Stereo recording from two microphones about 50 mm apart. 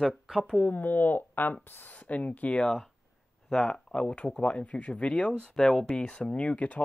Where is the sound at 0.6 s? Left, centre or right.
Left.